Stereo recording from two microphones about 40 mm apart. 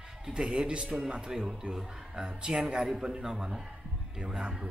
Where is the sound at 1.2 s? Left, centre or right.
Centre.